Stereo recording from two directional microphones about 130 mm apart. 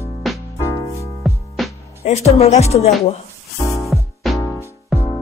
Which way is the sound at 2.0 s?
55° left (ahead or behind).